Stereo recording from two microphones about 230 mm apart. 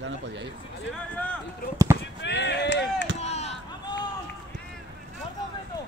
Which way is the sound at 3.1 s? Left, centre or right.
Left.